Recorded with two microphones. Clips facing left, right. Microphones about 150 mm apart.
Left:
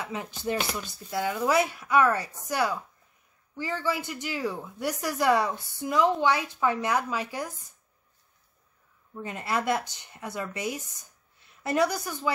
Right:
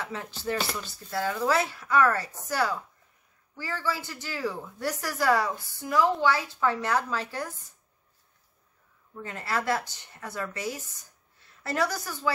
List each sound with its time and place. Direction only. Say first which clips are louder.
0.0 s a woman's voice: left 1 dB; 15° left (ahead or behind)
9.1 s speech: left 2 dB; 20° left (ahead or behind)